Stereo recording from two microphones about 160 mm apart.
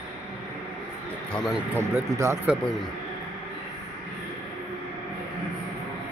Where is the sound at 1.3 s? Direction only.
Centre (ahead or behind).